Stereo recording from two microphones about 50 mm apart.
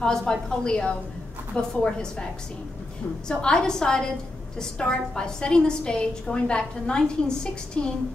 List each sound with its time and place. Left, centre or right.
0.2 s a woman's voice: centre
3.3 s a woman's voice: centre